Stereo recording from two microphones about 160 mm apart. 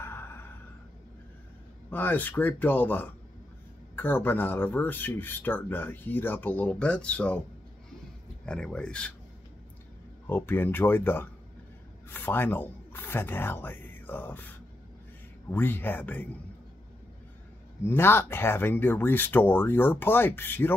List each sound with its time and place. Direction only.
0.0 s a sound: 15° left (ahead or behind)
1.9 s speech: 10° left (ahead or behind)
8.5 s speech: 5° left (ahead or behind)
10.2 s speech: 15° left (ahead or behind)
15.5 s speech: 10° left (ahead or behind)
17.8 s speech: 15° left (ahead or behind)